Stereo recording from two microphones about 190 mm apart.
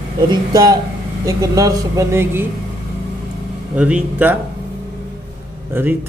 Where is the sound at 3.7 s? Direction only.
5° right (ahead or behind).